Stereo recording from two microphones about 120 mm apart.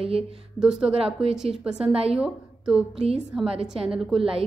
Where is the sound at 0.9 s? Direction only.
50° right (ahead or behind).